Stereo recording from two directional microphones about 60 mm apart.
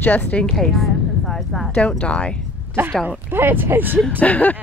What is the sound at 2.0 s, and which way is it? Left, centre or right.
Speech, centre.